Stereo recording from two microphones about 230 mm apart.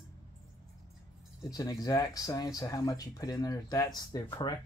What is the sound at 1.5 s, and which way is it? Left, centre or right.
Speech, centre.